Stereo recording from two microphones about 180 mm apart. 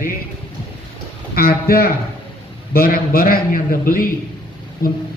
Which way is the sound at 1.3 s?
55° left (ahead or behind).